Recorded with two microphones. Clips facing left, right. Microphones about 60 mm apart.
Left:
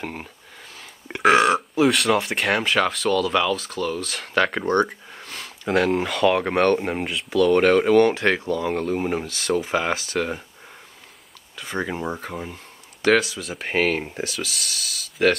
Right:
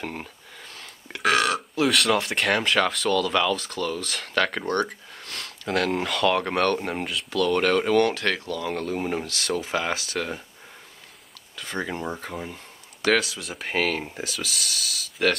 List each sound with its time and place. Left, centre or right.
0.0 s speech: centre
1.0 s burping: left
1.8 s speech: centre; by 8.7 s left
8.7 s speech: centre
11.5 s speech: centre